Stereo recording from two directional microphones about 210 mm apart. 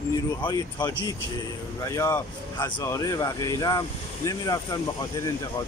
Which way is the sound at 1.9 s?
15° left (ahead or behind).